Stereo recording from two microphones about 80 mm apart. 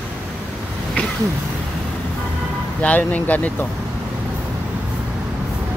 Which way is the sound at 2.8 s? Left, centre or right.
Centre.